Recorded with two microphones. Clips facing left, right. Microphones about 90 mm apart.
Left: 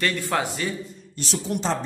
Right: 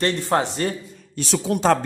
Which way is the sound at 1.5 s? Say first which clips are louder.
Right 3 dB; 90° right.